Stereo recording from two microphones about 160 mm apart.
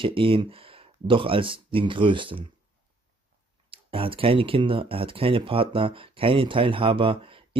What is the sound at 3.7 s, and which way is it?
Speech, 35° right (ahead or behind).